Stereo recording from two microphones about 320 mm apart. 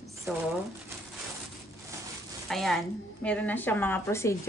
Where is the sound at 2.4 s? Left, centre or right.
Centre.